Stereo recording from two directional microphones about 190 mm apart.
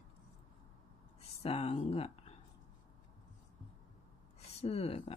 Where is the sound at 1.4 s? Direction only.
30° left (ahead or behind).